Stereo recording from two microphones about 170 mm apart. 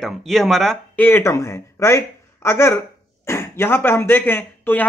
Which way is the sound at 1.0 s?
15° left (ahead or behind).